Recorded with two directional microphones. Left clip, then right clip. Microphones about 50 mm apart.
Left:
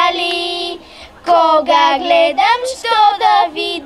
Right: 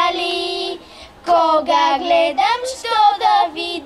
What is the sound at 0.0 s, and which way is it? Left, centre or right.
Music, left.